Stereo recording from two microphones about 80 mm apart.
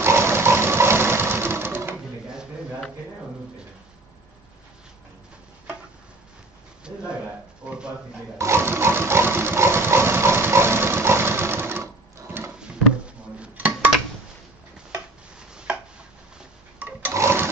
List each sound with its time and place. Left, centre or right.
0.0 s sewing machine: right
6.8 s a sound: centre
8.4 s sewing machine: right
12.5 s dishes: centre
15.3 s chopping: centre
16.3 s a sound: centre
17.1 s sewing machine: right